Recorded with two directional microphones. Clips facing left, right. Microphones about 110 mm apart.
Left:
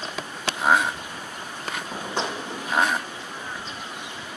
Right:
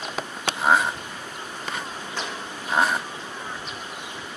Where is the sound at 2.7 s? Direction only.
5° right (ahead or behind).